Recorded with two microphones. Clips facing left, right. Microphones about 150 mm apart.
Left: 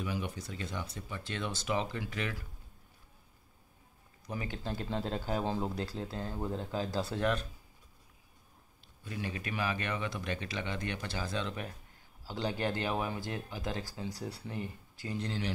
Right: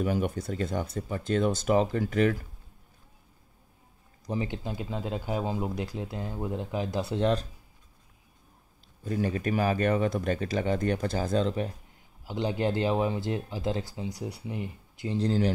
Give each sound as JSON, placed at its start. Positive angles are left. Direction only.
{"t": 0.0, "sound": "speech", "side_deg": -50}
{"t": 4.3, "sound": "speech", "side_deg": -25}
{"t": 4.6, "sound": "speech", "side_deg": -5}
{"t": 9.0, "sound": "speech", "side_deg": -40}
{"t": 12.3, "sound": "speech", "side_deg": -20}
{"t": 15.1, "sound": "speech", "side_deg": -40}